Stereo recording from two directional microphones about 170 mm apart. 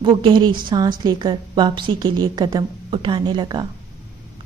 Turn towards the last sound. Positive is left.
turn(degrees=-25)  # may be behind; listen again after turning